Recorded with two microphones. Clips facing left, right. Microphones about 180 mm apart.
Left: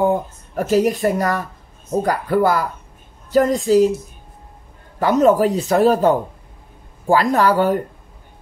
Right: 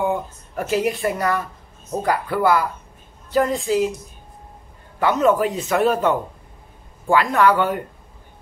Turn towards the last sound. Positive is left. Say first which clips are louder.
# left 2 dB
turn(degrees=40)  # may be behind; listen again after turning